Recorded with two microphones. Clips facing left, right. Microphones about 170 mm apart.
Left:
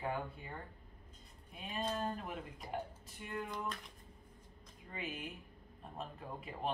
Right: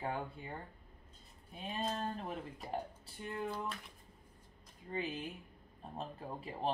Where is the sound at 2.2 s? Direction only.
30° right (ahead or behind).